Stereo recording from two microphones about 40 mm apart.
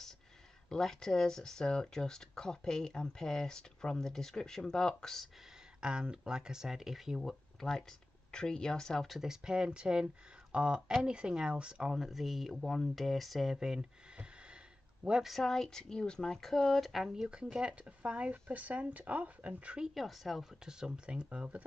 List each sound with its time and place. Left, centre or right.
0.7 s speech: centre
5.8 s speech: right; by 7.3 s centre
7.6 s speech: centre
9.2 s speech: centre
11.9 s speech: centre
13.6 s speech: centre
15.2 s speech: centre
16.9 s speech: centre
17.3 s speech: right
18.3 s speech: right
19.9 s speech: centre
20.6 s speech: right